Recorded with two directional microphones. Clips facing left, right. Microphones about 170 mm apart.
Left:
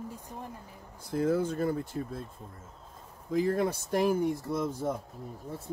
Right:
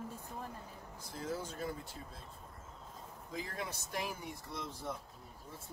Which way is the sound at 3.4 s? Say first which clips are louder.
Left 15 dB; 50° left (ahead or behind).